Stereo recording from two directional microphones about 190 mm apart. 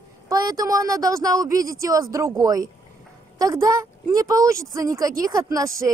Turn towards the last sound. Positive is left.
turn(degrees=-15)  # may be behind; listen again after turning